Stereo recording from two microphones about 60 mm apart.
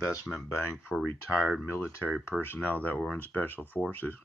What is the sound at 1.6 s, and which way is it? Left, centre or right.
Speech, left.